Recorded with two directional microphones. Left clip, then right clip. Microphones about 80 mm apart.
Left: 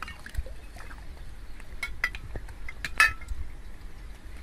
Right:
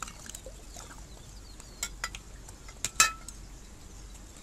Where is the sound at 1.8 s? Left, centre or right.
Right.